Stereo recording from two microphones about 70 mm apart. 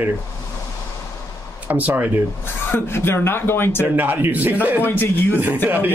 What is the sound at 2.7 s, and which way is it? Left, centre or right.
Speech, left.